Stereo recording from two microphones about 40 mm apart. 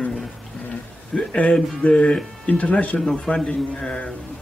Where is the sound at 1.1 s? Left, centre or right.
Left.